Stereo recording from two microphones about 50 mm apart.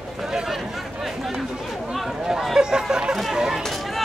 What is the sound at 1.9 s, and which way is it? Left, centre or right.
Chatter, centre.